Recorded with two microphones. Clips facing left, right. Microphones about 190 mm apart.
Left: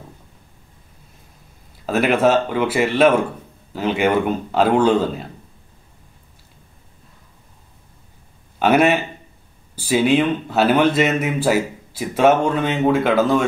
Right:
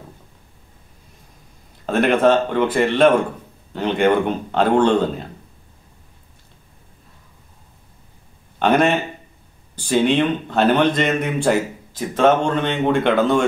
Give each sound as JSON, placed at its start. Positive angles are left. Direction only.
{"t": 1.9, "sound": "a man's voice", "side_deg": 5}
{"t": 8.5, "sound": "a man's voice", "side_deg": 5}